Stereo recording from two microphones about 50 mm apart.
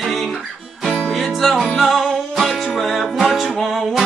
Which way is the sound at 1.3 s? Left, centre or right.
Centre.